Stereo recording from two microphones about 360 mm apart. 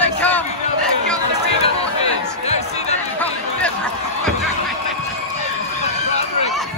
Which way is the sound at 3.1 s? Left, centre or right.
Centre.